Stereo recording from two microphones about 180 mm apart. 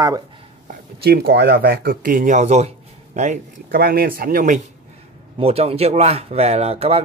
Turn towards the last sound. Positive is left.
turn(degrees=-35)  # may be behind; listen again after turning